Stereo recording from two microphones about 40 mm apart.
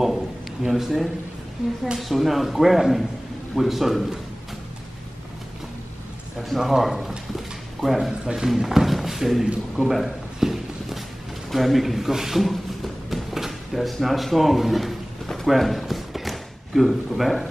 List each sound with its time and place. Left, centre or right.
0.7 s speech: centre
6.6 s a sound: centre
8.1 s speech: centre
8.5 s speech: centre
10.4 s walk: centre
11.5 s a sound: centre
13.7 s speech: centre
15.2 s clip-clop: centre
15.5 s speech: centre
15.8 s a sound: centre